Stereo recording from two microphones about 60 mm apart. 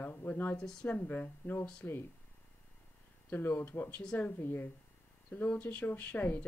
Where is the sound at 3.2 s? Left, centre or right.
Left.